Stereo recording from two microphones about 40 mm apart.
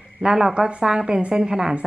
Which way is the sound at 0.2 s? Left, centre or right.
Centre.